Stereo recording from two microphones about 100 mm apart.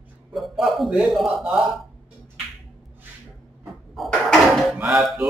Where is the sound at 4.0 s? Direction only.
Centre (ahead or behind).